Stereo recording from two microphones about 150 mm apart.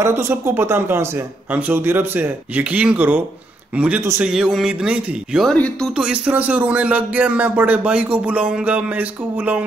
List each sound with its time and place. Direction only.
0.0 s speech: 15° right (ahead or behind)
4.3 s speech: 5° right (ahead or behind)
5.9 s speech: 10° right (ahead or behind)